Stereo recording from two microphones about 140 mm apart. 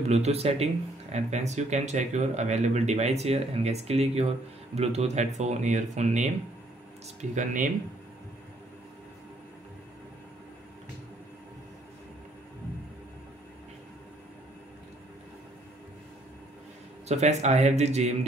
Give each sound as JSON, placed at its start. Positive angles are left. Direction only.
{"t": 0.0, "sound": "speech", "side_deg": -50}
{"t": 17.1, "sound": "speech", "side_deg": -55}